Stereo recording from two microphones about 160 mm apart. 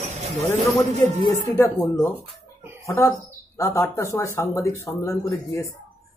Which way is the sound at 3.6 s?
20° left (ahead or behind).